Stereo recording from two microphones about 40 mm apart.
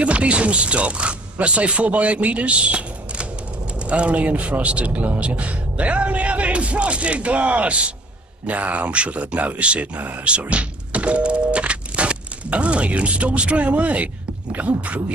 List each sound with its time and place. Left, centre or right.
0.0 s a man's voice: right